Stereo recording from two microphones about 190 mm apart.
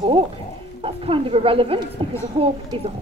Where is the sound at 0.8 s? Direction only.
30° right (ahead or behind).